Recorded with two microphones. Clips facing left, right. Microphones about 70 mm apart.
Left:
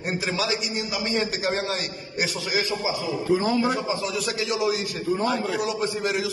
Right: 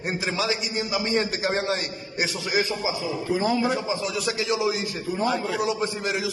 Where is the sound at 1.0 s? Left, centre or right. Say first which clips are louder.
Left 1 dB; right.